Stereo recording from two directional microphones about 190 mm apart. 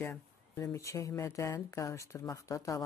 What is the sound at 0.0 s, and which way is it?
Speech, 15° left (ahead or behind).